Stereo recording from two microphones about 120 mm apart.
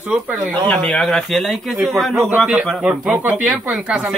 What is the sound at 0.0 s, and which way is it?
Speech, 10° right (ahead or behind).